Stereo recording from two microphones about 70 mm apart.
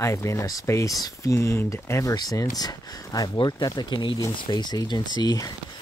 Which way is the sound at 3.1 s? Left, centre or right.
Left.